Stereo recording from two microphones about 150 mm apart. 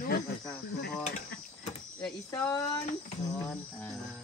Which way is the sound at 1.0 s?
50° left (ahead or behind).